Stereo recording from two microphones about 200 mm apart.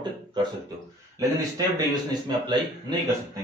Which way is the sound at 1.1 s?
20° right (ahead or behind).